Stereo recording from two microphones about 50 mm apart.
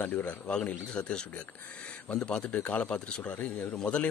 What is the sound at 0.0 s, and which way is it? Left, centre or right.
Speech, left.